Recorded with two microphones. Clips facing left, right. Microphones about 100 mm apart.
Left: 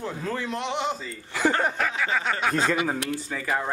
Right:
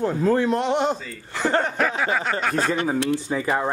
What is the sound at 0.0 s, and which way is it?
Speech, 50° right (ahead or behind).